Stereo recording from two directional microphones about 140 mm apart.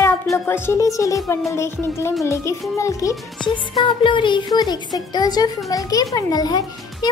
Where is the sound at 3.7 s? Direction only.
35° left (ahead or behind).